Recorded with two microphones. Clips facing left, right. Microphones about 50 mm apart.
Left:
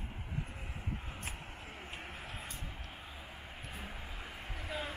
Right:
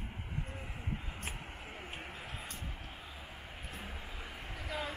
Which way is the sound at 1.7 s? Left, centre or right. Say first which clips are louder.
Right 1 dB; centre.